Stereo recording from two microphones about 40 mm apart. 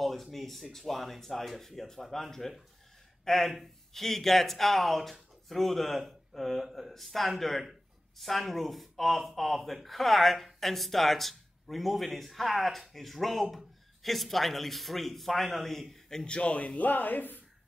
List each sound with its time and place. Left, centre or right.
0.0 s speech: centre
16.3 s a man's voice: left
16.5 s speech: left